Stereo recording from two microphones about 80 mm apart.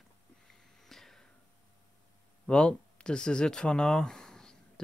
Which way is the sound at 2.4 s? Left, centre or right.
Centre.